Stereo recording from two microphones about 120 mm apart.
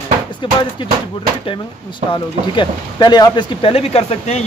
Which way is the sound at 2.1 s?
35° left (ahead or behind).